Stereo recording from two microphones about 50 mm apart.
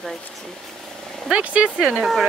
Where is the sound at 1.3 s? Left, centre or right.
Right.